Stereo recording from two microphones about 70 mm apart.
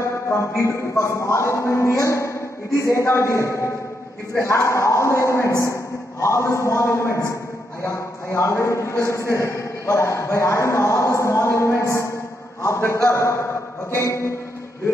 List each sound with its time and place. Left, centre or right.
0.3 s a man's voice: left